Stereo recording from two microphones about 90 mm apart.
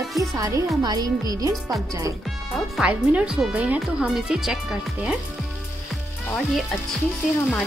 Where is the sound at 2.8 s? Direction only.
10° right (ahead or behind).